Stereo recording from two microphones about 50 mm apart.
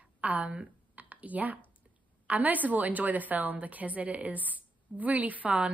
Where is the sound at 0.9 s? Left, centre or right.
Right.